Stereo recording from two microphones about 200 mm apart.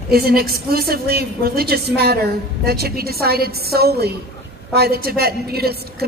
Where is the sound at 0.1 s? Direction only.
50° right (ahead or behind).